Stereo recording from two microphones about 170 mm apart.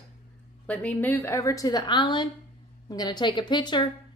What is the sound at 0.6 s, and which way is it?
A woman's voice, 10° left (ahead or behind).